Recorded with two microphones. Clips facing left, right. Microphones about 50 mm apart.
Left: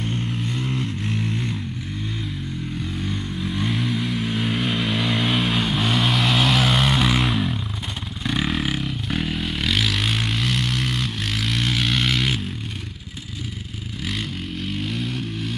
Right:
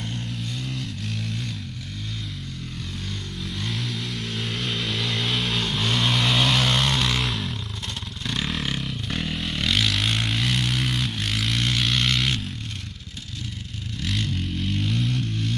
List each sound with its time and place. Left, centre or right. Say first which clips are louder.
0.0 s vehicle: left 5 dB; left
3.0 s vehicle: left 6 dB; centre
14.0 s vehicle: right 1 dB; centre